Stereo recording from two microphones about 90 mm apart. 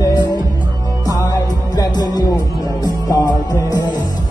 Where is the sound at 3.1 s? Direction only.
45° left (ahead or behind).